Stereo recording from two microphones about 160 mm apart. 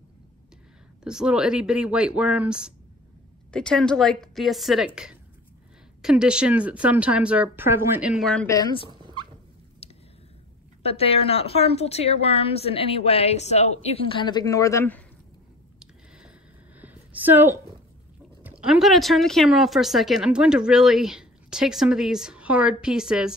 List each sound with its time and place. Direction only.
1.0 s speech: 5° right (ahead or behind)
3.5 s speech: 5° left (ahead or behind)
8.5 s speech: 25° left (ahead or behind)
8.9 s dog: 30° right (ahead or behind)
9.8 s a sound: 40° left (ahead or behind)
10.8 s a woman's voice: 40° left (ahead or behind); by 15.0 s 15° left (ahead or behind)
15.8 s a sound: 5° right (ahead or behind)
18.4 s speech: 10° right (ahead or behind)